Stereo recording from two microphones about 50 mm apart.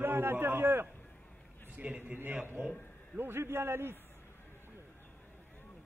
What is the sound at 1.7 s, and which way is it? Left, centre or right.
Speech, right.